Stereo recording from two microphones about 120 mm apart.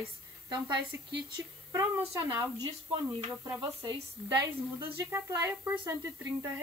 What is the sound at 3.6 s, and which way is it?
Speech, 40° right (ahead or behind).